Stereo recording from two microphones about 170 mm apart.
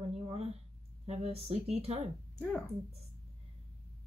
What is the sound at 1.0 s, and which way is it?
Speech, 35° right (ahead or behind).